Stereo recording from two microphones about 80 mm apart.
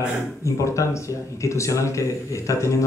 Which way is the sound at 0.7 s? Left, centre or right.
Left.